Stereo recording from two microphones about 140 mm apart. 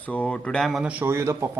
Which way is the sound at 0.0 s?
10° left (ahead or behind).